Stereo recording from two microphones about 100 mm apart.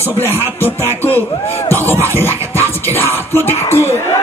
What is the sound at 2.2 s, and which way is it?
Music, 25° left (ahead or behind).